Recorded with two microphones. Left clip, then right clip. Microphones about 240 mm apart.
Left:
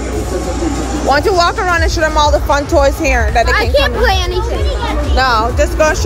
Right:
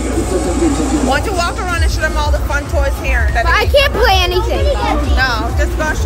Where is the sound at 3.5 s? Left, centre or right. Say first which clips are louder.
Right 1 dB; right.